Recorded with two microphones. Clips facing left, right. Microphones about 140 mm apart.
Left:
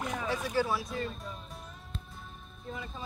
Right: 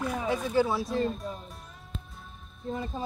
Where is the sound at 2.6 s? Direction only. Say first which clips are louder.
Right 8 dB; 30° right (ahead or behind).